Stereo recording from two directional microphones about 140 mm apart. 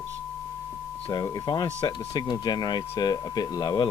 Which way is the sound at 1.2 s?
30° left (ahead or behind).